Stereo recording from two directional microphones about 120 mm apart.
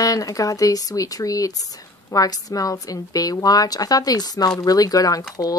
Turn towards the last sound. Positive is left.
turn(degrees=30)  # may be behind; listen again after turning